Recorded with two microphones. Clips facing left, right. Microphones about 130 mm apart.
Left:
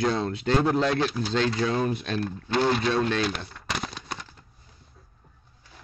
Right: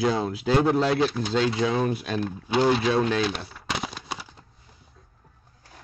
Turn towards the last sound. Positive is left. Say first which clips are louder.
# right 2 dB
turn(degrees=-5)  # may be behind; listen again after turning